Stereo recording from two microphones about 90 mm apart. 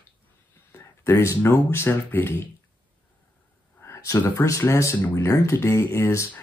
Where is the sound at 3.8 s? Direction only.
35° left (ahead or behind).